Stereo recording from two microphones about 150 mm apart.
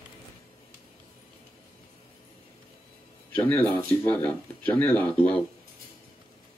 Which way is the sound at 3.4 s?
10° left (ahead or behind).